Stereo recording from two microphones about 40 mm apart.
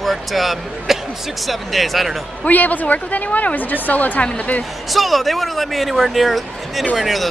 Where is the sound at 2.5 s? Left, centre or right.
Left.